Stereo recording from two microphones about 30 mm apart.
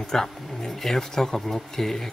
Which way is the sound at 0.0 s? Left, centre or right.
Centre.